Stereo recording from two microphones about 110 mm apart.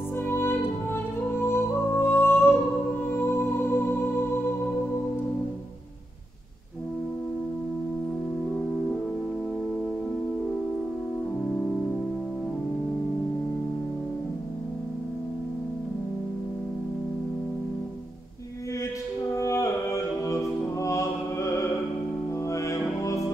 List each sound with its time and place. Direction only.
0.3 s music: 20° left (ahead or behind)
19.4 s music: 30° left (ahead or behind)